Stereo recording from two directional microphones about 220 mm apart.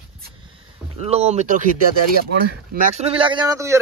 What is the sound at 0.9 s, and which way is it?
Speech, 30° right (ahead or behind).